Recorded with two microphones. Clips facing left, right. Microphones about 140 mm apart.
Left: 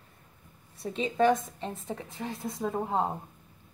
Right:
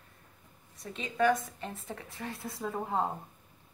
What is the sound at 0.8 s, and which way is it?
A woman's voice, 30° left (ahead or behind).